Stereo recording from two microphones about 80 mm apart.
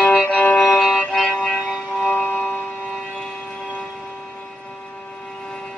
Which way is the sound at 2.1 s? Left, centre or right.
Left.